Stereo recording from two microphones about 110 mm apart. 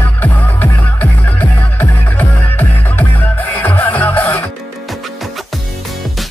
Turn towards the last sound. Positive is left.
turn(degrees=15)  # may be behind; listen again after turning